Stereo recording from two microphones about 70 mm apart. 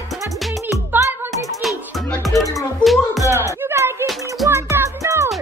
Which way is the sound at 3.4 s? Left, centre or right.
Right.